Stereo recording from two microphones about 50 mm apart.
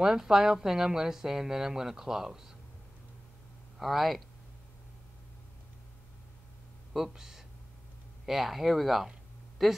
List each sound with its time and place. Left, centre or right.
0.0 s a woman's voice: centre
3.7 s speech: centre
6.9 s speech: centre